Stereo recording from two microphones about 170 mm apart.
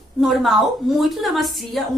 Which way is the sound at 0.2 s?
Centre (ahead or behind).